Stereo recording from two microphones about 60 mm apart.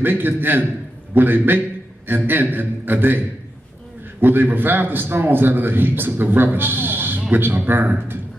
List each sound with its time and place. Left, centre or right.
0.0 s a man's voice: right